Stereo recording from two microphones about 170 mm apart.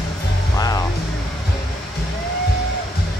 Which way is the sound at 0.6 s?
20° left (ahead or behind).